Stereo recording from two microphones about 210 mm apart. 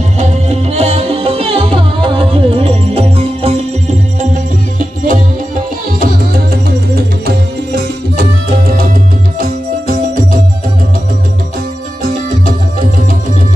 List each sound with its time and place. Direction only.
0.2 s music: 30° right (ahead or behind)
4.7 s music: 40° right (ahead or behind)